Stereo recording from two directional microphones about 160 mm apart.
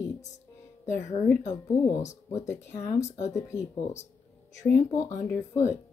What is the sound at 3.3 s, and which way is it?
Speech, 20° left (ahead or behind).